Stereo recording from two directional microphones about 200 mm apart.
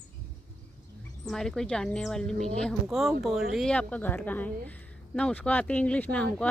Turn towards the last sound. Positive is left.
turn(degrees=5)  # may be behind; listen again after turning